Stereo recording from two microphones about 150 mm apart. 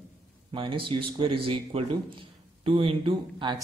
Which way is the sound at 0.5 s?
35° right (ahead or behind).